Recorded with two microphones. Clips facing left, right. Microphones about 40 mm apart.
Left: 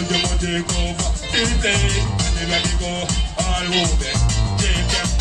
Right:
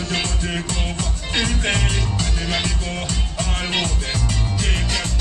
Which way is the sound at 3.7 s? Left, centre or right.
Left.